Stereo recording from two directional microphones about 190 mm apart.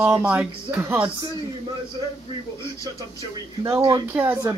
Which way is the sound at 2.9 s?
15° right (ahead or behind).